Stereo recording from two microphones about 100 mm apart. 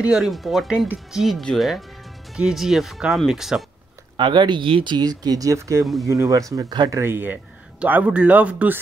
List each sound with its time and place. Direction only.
0.0 s speech: 5° right (ahead or behind)
4.2 s speech: 50° right (ahead or behind)
4.9 s speech: 40° right (ahead or behind); by 8.7 s 15° right (ahead or behind)